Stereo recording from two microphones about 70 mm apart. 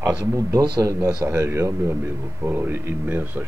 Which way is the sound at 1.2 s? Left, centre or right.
Right.